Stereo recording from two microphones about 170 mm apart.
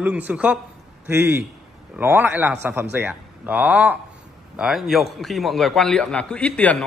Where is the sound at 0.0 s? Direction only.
10° right (ahead or behind).